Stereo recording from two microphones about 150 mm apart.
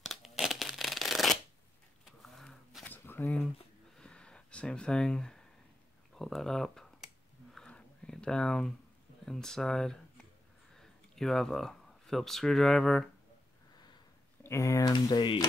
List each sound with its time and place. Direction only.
0.0 s shuffling cards: centre (ahead or behind)
2.0 s a sound: centre (ahead or behind)
9.2 s speech: 5° left (ahead or behind)
14.4 s speech: 20° left (ahead or behind)